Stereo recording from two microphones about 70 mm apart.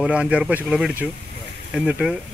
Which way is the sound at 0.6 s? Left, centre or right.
Centre.